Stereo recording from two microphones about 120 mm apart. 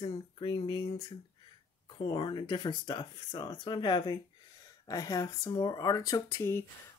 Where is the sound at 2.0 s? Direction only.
40° left (ahead or behind).